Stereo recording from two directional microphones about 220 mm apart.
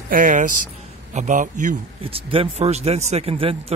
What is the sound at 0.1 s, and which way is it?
A man's voice, 35° right (ahead or behind).